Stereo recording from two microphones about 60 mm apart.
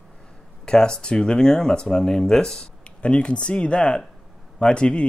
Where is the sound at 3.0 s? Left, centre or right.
Centre.